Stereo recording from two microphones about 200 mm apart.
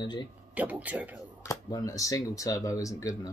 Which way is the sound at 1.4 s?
15° left (ahead or behind).